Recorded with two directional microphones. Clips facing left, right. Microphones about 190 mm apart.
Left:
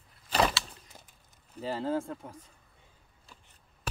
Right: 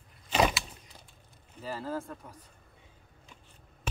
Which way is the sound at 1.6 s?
25° left (ahead or behind).